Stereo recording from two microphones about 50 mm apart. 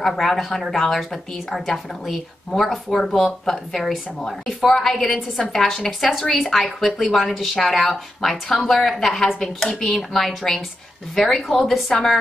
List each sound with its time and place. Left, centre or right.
0.0 s a woman's voice: centre